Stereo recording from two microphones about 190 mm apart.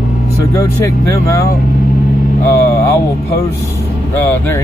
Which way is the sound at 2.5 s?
15° left (ahead or behind).